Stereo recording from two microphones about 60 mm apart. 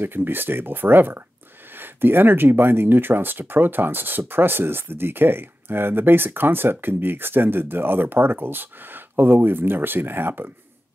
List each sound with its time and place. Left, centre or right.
0.0 s speech: right